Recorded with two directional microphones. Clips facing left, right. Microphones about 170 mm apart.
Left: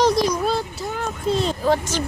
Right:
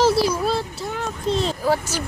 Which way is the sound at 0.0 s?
5° right (ahead or behind).